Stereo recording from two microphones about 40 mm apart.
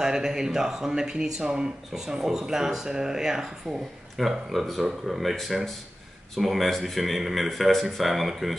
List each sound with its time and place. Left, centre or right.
0.0 s speech: centre
4.2 s speech: centre
5.2 s speech: centre